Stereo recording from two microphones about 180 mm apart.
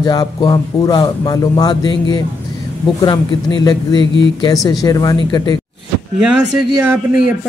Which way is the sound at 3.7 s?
25° left (ahead or behind).